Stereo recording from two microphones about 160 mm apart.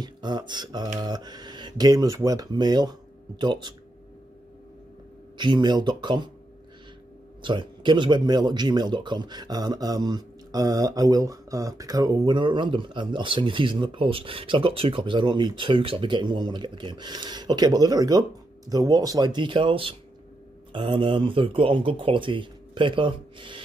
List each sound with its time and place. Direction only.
0.0 s a sound: 25° right (ahead or behind)
0.9 s speech: 25° right (ahead or behind)
5.4 s speech: 30° right (ahead or behind)
7.4 s speech: 30° right (ahead or behind)